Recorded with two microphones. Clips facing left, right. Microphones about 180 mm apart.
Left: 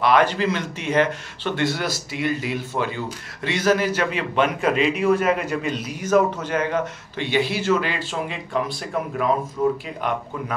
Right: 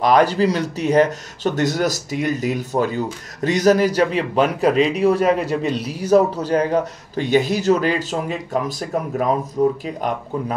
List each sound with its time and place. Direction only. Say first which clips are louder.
0.0 s speech: right 3 dB; 40° right (ahead or behind)